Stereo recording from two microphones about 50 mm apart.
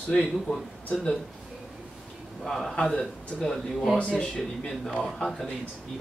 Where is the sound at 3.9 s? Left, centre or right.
Left.